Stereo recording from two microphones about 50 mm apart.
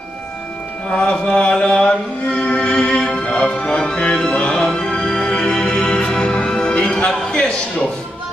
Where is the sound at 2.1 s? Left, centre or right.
Left.